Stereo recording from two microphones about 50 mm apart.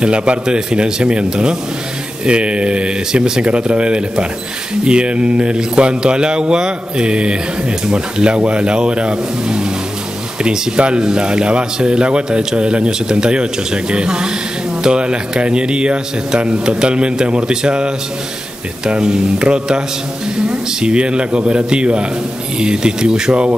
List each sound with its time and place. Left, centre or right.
0.0 s speech: right